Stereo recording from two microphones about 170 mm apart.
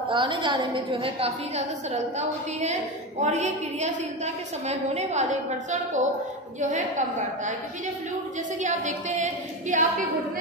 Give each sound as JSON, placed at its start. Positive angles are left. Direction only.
{"t": 0.1, "sound": "a woman's voice", "side_deg": -30}
{"t": 8.5, "sound": "a woman's voice", "side_deg": -45}